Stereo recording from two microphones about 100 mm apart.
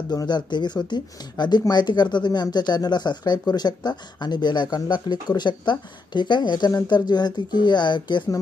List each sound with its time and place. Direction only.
0.1 s speech: 45° left (ahead or behind)